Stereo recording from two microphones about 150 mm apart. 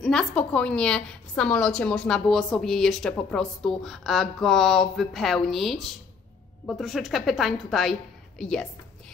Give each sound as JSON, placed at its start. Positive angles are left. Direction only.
{"t": 0.0, "sound": "a woman's voice", "side_deg": 5}